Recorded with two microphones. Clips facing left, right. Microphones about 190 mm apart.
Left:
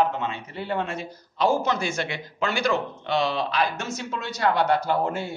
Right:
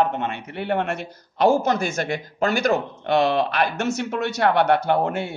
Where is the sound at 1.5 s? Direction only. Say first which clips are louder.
Right 4 dB; 45° right (ahead or behind).